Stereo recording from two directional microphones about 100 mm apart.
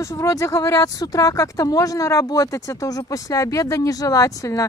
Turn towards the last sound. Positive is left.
turn(degrees=35)  # may be behind; listen again after turning